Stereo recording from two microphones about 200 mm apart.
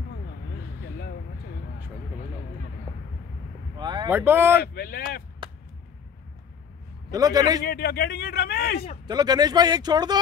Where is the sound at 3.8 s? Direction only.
20° right (ahead or behind).